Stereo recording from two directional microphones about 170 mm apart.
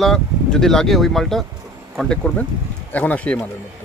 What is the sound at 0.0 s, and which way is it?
Speech, centre (ahead or behind).